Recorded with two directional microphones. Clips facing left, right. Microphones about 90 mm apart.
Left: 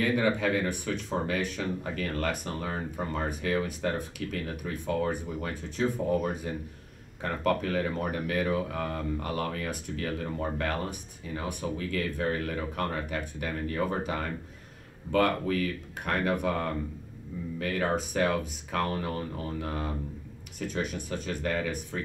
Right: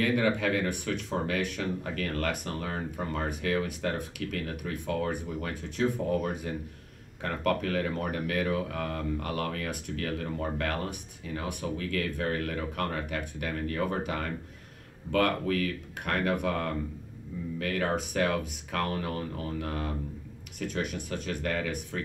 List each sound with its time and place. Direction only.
0.0 s speech: 25° left (ahead or behind)
20.5 s speech: 35° left (ahead or behind)